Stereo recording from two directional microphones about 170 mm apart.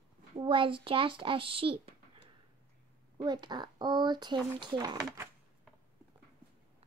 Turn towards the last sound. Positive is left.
turn(degrees=-25)  # may be behind; listen again after turning